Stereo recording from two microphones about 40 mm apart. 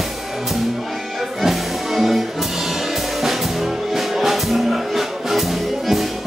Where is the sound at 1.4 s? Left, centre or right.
Centre.